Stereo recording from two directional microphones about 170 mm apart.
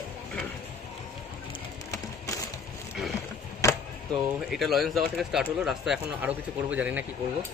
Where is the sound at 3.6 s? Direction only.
15° left (ahead or behind).